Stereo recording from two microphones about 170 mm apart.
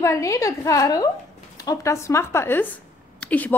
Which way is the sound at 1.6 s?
20° left (ahead or behind).